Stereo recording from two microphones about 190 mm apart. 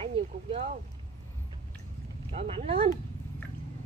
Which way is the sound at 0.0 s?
30° right (ahead or behind).